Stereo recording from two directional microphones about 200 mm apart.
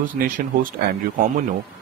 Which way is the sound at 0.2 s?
45° right (ahead or behind).